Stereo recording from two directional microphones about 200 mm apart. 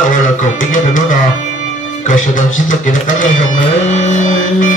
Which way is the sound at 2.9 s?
40° left (ahead or behind).